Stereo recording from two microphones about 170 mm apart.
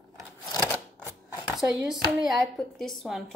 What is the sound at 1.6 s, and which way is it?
A woman's voice, 5° right (ahead or behind).